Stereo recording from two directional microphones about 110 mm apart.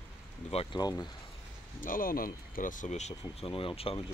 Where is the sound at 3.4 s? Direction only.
55° left (ahead or behind).